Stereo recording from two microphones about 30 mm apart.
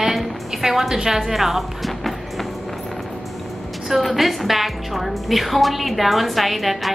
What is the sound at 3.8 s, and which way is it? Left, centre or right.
A woman's voice, centre.